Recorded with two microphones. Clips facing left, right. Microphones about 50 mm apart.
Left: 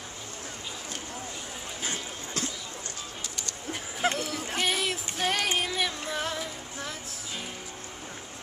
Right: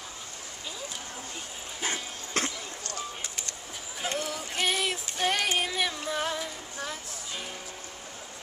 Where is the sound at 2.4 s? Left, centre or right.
Right.